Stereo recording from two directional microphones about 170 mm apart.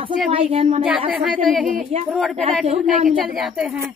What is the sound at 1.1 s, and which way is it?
Speech, centre (ahead or behind).